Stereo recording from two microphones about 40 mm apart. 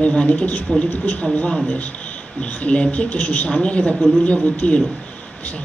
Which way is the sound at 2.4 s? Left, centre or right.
Left.